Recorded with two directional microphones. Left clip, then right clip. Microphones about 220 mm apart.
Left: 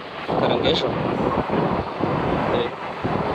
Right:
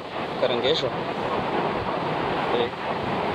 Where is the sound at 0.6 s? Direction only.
Centre (ahead or behind).